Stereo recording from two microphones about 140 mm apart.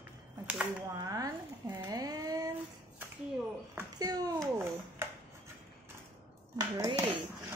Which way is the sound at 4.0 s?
25° right (ahead or behind).